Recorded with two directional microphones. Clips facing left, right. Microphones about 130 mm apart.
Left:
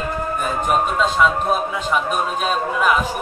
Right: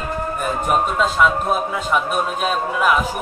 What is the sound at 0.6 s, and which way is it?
Speech, centre (ahead or behind).